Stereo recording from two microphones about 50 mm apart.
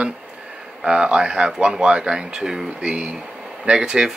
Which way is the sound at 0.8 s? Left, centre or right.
Centre.